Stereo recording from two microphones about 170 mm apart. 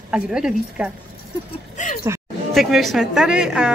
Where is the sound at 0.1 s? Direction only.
5° right (ahead or behind).